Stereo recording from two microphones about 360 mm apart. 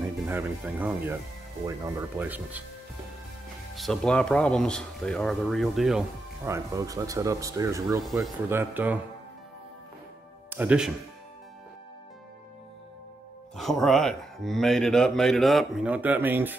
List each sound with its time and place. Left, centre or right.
0.0 s speech: centre
3.7 s speech: centre
10.5 s speech: centre
13.6 s speech: centre